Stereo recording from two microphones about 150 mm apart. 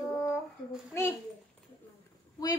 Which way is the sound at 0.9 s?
15° left (ahead or behind).